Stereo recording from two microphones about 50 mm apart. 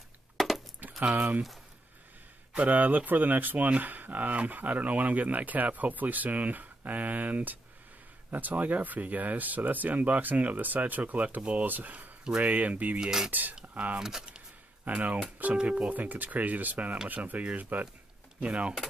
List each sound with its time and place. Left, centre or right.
1.1 s speech: right
2.5 s speech: right
13.0 s speech: centre
13.3 s speech: right
13.9 s speech: centre
14.9 s speech: right